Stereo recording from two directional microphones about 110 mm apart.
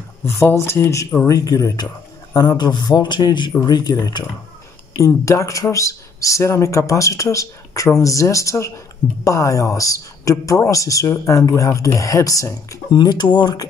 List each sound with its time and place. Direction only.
0.2 s speech: 20° left (ahead or behind); by 13.7 s 40° left (ahead or behind)